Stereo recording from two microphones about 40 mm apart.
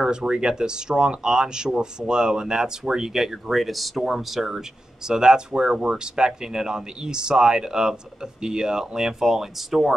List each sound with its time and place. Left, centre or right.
0.0 s speech: right; by 9.9 s centre